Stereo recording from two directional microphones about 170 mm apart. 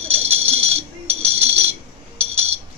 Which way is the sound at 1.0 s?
40° right (ahead or behind).